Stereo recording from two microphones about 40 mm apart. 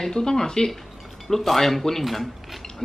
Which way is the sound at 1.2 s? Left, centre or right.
Centre.